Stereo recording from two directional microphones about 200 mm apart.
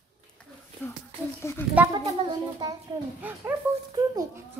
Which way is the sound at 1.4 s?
15° left (ahead or behind).